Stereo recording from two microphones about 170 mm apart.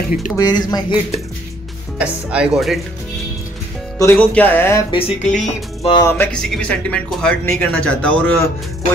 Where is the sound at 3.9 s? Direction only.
10° left (ahead or behind).